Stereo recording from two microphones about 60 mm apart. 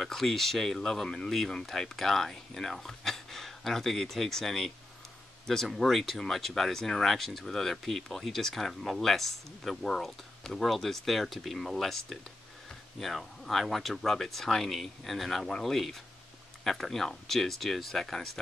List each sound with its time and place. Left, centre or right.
0.0 s speech: centre